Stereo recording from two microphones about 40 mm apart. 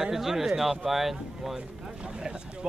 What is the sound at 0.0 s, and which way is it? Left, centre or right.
Speech, centre.